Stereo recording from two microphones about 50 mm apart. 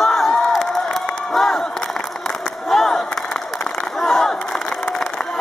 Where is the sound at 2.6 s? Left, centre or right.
Centre.